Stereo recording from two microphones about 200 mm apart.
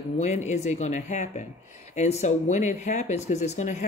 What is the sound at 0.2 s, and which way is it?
Speech, 35° left (ahead or behind).